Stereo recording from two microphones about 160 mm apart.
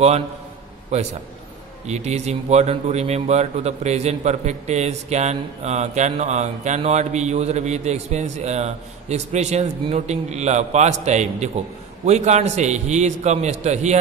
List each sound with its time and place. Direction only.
1.9 s speech: 45° right (ahead or behind)